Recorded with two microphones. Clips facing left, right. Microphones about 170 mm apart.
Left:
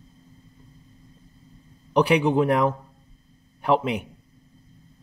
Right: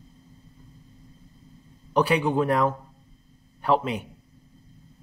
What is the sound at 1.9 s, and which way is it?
A man's voice, 15° left (ahead or behind).